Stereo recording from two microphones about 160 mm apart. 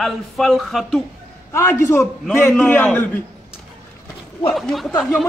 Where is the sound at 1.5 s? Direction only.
15° left (ahead or behind).